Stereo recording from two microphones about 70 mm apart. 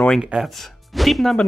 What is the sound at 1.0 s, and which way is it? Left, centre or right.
Speech, centre.